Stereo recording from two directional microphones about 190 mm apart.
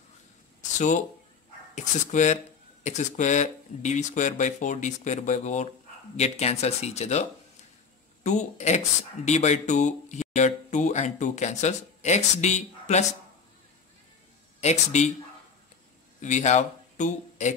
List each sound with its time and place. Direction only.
0.7 s speech: 40° left (ahead or behind)
14.6 s speech: 35° left (ahead or behind)
16.2 s speech: 40° left (ahead or behind)